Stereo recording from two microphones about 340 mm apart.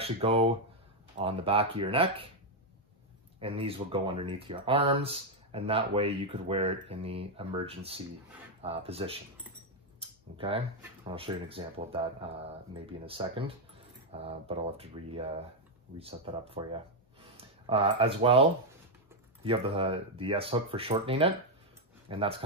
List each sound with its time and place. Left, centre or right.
0.0 s speech: centre
3.3 s speech: centre
9.9 s tick-tock: centre
11.1 s speech: centre
22.0 s a sound: centre